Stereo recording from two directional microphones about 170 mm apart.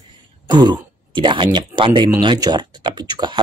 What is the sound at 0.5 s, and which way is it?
Speech, 25° right (ahead or behind).